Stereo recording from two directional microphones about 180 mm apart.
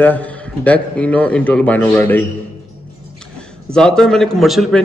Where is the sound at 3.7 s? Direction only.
5° left (ahead or behind).